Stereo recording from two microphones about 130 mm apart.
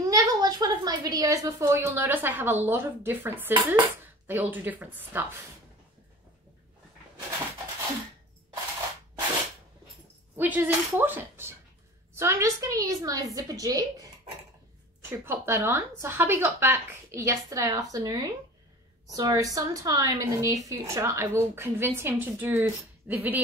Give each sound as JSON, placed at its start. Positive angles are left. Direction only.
{"t": 0.0, "sound": "a woman's voice", "side_deg": -30}
{"t": 10.3, "sound": "a woman's voice", "side_deg": -15}
{"t": 15.0, "sound": "a woman's voice", "side_deg": -20}